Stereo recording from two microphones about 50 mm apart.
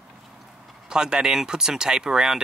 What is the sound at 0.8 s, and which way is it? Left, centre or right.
Speech, centre.